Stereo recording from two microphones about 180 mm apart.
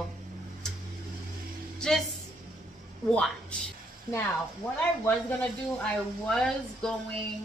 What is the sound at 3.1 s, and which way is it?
Speech, 5° left (ahead or behind).